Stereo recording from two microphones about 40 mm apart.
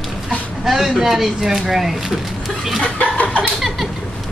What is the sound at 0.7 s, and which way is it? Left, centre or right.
Speech, centre.